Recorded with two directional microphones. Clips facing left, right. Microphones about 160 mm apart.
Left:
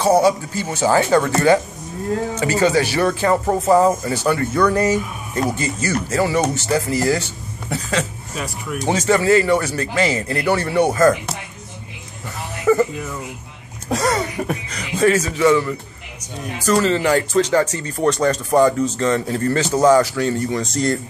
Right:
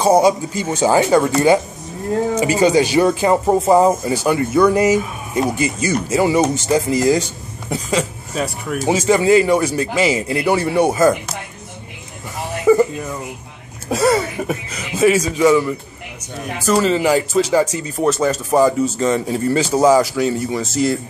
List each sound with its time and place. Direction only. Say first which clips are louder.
0.0 s speech: right 2 dB; 15° right (ahead or behind)
2.3 s speech: right 3 dB; 15° right (ahead or behind)
12.7 s music: right 3 dB; 15° right (ahead or behind)
13.8 s speech: right 4 dB; 5° right (ahead or behind)